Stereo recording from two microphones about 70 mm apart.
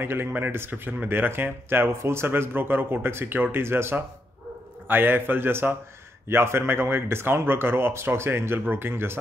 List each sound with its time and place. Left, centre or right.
0.0 s speech: right